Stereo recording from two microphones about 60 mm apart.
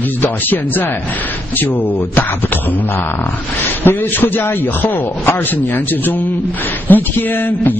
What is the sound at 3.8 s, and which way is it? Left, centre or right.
A man's voice, left.